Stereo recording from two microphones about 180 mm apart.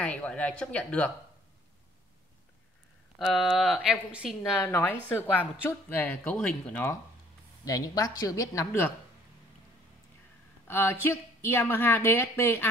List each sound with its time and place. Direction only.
0.0 s a woman's voice: 5° left (ahead or behind)
3.2 s speech: centre (ahead or behind)
4.6 s a woman's voice: 15° left (ahead or behind)
10.7 s a woman's voice: 10° left (ahead or behind)